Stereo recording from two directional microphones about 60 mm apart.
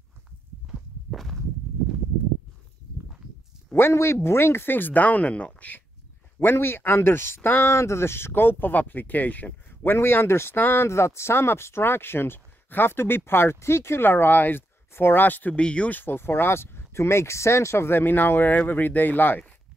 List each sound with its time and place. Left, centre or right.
3.7 s speech: left
6.4 s speech: left
7.6 s speech: left
10.9 s speech: left
15.6 s speech: centre
16.0 s speech: left